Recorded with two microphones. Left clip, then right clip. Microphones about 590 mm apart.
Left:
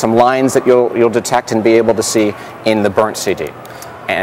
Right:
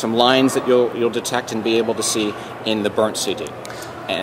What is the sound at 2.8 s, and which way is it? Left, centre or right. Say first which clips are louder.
Speech: left 6 dB; left.